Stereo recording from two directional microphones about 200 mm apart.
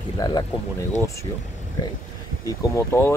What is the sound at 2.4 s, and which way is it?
Speech, 15° left (ahead or behind).